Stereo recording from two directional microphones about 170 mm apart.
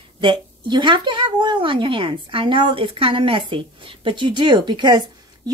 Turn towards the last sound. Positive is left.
turn(degrees=-25)  # may be behind; listen again after turning